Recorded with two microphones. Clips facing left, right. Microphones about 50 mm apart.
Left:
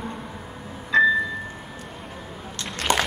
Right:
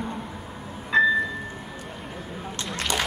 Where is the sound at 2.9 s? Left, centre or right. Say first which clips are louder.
Left 5 dB; left.